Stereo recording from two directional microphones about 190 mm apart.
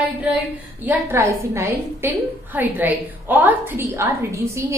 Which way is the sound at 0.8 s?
15° right (ahead or behind).